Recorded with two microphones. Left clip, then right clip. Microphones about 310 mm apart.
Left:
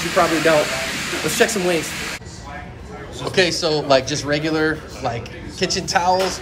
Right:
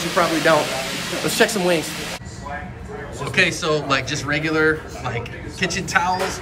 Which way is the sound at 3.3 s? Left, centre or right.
Centre.